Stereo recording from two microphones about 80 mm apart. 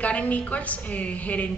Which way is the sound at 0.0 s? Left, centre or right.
Centre.